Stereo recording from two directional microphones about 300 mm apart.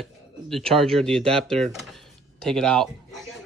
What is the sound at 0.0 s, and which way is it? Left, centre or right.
Speech, centre.